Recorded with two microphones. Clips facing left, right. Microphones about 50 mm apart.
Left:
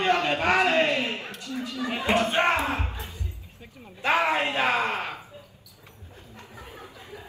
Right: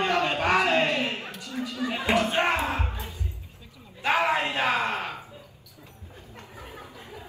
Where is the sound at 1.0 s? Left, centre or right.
Right.